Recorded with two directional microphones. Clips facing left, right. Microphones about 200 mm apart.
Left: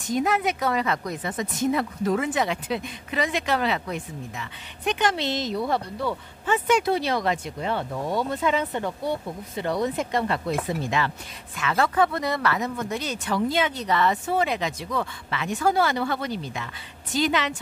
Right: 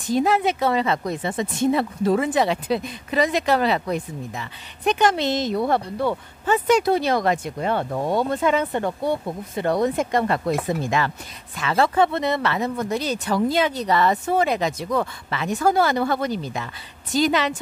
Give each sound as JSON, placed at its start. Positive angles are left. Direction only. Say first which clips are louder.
{"t": 0.1, "sound": "speech", "louder": "right 4 dB", "side_deg": -30}
{"t": 6.4, "sound": "speech", "louder": "right 4 dB", "side_deg": -40}
{"t": 11.5, "sound": "speech", "louder": "right 3 dB", "side_deg": -30}